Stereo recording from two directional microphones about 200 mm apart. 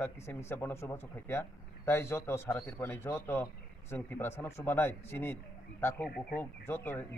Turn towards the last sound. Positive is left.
turn(degrees=10)  # may be behind; listen again after turning